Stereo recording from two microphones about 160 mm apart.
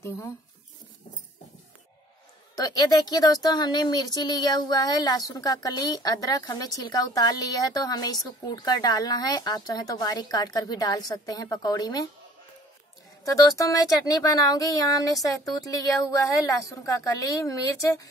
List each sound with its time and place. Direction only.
2.5 s speech: 25° left (ahead or behind)
13.2 s speech: 20° left (ahead or behind)